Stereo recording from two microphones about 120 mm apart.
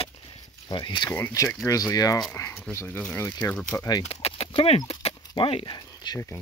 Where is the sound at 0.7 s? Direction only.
40° left (ahead or behind).